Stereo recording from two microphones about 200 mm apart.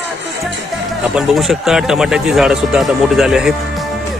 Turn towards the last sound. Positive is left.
turn(degrees=0)  # may be behind; listen again after turning